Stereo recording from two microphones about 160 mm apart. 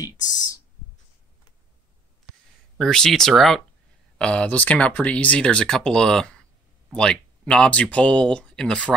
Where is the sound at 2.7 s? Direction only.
5° left (ahead or behind).